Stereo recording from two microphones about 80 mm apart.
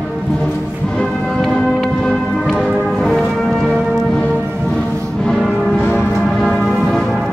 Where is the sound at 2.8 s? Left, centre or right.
Centre.